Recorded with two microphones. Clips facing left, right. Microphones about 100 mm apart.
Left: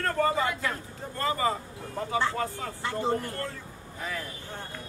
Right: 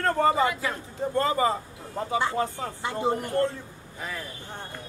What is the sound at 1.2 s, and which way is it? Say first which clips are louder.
Speech: right 3 dB; 25° right (ahead or behind).